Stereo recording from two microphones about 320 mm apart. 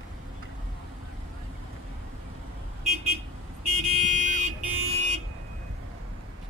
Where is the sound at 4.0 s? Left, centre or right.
Right.